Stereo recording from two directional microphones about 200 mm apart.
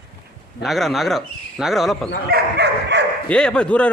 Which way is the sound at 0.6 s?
Centre (ahead or behind).